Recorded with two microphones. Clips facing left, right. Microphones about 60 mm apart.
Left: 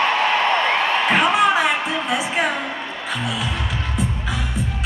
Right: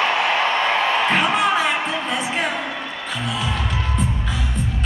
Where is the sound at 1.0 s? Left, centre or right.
Centre.